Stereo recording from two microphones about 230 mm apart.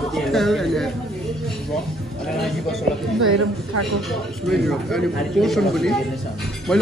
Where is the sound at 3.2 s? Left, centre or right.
Right.